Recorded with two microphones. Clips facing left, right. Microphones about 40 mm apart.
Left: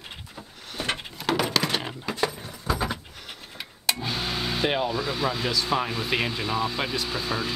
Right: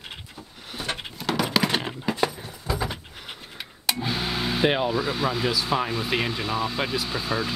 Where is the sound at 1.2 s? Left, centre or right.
Centre.